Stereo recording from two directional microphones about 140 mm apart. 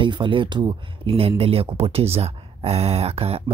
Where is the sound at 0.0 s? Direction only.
35° right (ahead or behind).